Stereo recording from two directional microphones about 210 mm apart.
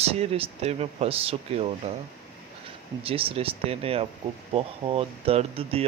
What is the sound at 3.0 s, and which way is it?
Speech, 25° right (ahead or behind).